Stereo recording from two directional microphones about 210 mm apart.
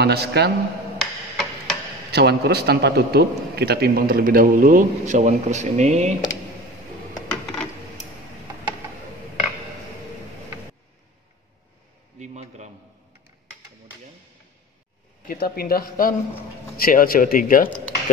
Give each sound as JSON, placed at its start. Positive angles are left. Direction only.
{"t": 0.0, "sound": "a man's voice", "side_deg": -50}
{"t": 0.9, "sound": "hammer", "side_deg": 0}
{"t": 2.1, "sound": "a man's voice", "side_deg": -50}
{"t": 7.2, "sound": "a sound", "side_deg": 5}
{"t": 12.2, "sound": "a sound", "side_deg": -35}
{"t": 15.2, "sound": "a man's voice", "side_deg": 45}